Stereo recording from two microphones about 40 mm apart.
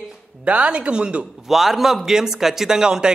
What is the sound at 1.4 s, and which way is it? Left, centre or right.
A man's voice, centre.